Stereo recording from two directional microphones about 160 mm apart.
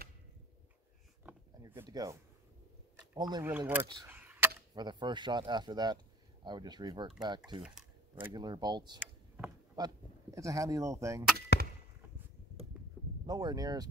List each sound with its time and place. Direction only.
1.9 s speech: 25° right (ahead or behind)
3.2 s speech: 25° right (ahead or behind)
3.5 s speech: 10° right (ahead or behind)
4.1 s chop: 10° right (ahead or behind)
4.7 s speech: 25° right (ahead or behind)
11.5 s chop: 90° left
13.0 s a sound: 5° left (ahead or behind)
13.3 s speech: 25° right (ahead or behind)